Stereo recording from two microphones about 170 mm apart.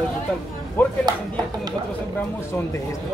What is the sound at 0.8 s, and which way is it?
Speech, 10° left (ahead or behind).